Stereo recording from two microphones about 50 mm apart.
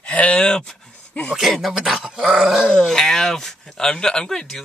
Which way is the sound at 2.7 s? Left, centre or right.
Centre.